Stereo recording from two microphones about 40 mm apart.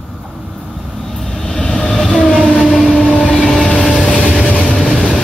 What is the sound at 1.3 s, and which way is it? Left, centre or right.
Vehicle, centre.